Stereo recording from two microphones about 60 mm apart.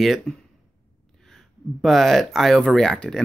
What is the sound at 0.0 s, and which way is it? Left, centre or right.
Speech, centre.